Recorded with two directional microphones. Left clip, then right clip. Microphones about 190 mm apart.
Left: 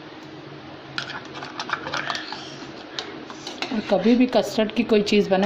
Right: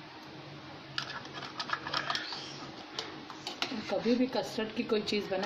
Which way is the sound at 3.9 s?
45° left (ahead or behind).